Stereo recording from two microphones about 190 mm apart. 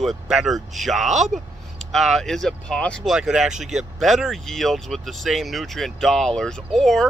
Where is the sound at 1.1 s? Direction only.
40° right (ahead or behind).